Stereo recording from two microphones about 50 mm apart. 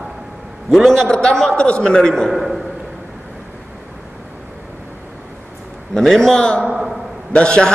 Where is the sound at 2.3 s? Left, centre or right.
Centre.